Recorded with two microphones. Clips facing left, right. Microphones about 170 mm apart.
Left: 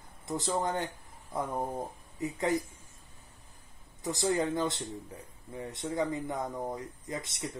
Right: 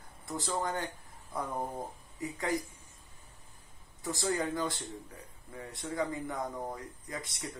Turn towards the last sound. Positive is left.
turn(degrees=20)  # may be behind; listen again after turning